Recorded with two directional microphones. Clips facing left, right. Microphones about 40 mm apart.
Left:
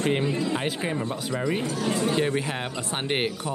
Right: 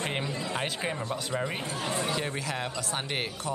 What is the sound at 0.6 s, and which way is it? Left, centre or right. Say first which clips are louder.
Speech: left 3 dB; centre.